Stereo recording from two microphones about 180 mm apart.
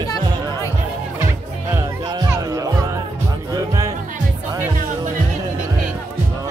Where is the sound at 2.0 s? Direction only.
20° right (ahead or behind).